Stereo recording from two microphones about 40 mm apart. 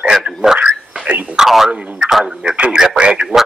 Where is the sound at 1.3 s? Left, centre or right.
Centre.